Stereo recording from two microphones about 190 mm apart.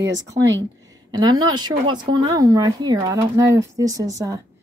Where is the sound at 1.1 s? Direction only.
20° right (ahead or behind).